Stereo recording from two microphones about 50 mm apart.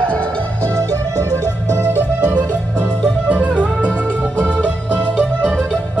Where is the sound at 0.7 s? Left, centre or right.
Right.